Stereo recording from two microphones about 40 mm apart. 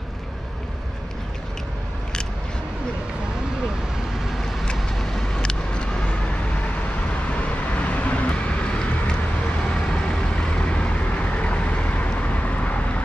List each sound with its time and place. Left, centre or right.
5.3 s vehicle: left
7.2 s vehicle: left
10.3 s vehicle: left